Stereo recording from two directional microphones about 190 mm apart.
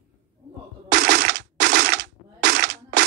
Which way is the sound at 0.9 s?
65° right (ahead or behind).